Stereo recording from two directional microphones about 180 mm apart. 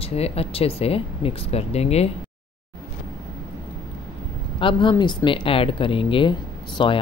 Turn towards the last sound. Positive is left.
turn(degrees=25)  # may be behind; listen again after turning